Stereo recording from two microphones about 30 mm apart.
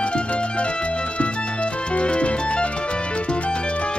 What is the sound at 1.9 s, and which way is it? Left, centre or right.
Music, left.